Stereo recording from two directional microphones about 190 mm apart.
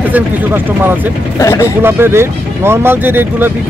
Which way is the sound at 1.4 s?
15° left (ahead or behind).